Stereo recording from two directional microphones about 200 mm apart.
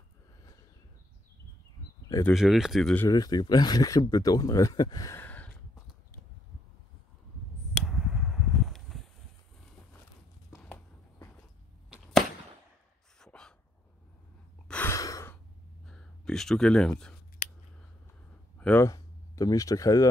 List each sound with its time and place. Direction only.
2.0 s speech: 15° left (ahead or behind)
2.3 s speech: centre (ahead or behind)
3.1 s speech: 20° left (ahead or behind)
7.8 s a sound: centre (ahead or behind)
10.5 s a sound: 15° left (ahead or behind)
11.9 s arrow: centre (ahead or behind)
13.2 s dog: 5° left (ahead or behind)
14.7 s sigh: 10° left (ahead or behind)
15.9 s a sound: 5° left (ahead or behind)
17.4 s scissors: 40° left (ahead or behind)
18.6 s speech: 10° left (ahead or behind)